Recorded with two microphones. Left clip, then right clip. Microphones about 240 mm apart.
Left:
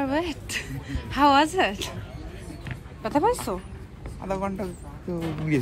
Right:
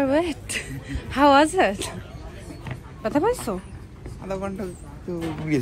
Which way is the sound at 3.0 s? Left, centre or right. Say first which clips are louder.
Right 1 dB; centre.